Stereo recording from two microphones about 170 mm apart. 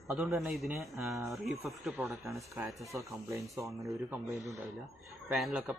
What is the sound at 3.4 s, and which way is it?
Speech, centre (ahead or behind).